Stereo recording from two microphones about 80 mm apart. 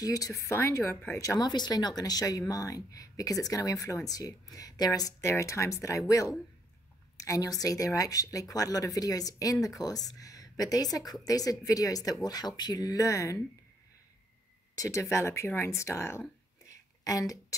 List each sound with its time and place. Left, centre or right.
0.0 s speech: left
0.5 s speech: left
1.1 s speech: left
1.5 s speech: left
5.2 s a woman's voice: left
14.8 s speech: left
17.0 s speech: left